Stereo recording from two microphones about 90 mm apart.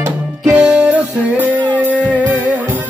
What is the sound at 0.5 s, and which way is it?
Music, 10° right (ahead or behind).